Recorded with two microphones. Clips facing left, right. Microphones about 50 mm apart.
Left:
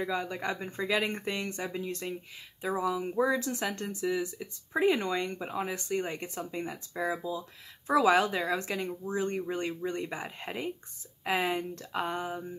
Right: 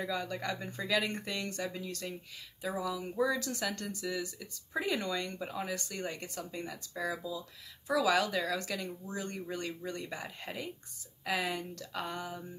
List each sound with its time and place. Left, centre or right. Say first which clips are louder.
0.0 s speech: left 3 dB; left
7.2 s speech: left 4 dB; left